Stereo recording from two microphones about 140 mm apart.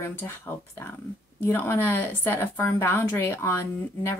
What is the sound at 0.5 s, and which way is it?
Speech, 20° left (ahead or behind).